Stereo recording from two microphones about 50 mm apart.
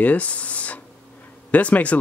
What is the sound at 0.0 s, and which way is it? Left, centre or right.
Speech, left.